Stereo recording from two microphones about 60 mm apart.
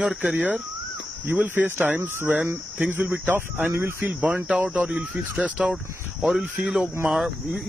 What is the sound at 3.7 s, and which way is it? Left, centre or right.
Speech, right.